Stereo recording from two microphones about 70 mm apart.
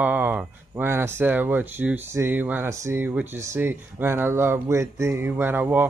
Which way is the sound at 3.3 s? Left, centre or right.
Right.